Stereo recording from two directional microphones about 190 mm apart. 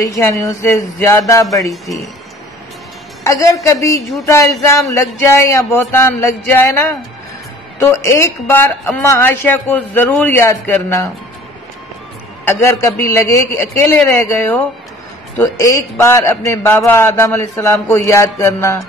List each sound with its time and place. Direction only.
0.0 s a man's voice: 15° left (ahead or behind)
3.3 s a man's voice: 15° left (ahead or behind)
12.4 s a man's voice: 10° left (ahead or behind)